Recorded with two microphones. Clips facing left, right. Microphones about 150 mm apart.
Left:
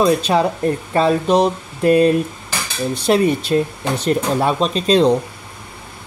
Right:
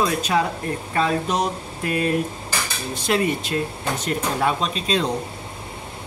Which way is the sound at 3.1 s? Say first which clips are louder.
Left 6 dB; 30° left (ahead or behind).